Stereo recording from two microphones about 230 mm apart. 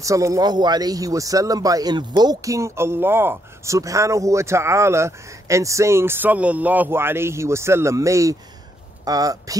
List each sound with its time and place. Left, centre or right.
0.0 s speech: centre